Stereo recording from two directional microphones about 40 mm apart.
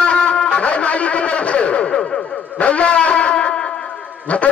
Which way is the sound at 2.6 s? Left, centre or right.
Left.